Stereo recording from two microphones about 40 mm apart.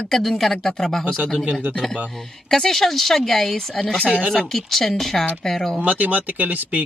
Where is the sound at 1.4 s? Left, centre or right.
Right.